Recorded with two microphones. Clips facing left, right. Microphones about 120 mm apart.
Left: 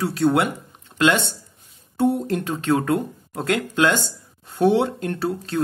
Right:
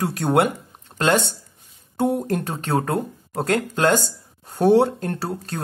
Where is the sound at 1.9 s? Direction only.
45° right (ahead or behind).